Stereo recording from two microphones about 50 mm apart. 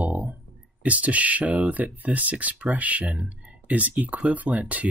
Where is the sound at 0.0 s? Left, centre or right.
Right.